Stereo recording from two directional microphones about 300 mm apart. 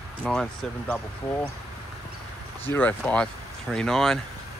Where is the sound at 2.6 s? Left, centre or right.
Centre.